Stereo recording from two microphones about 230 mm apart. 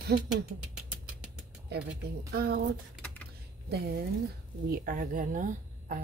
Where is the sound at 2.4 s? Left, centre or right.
Right.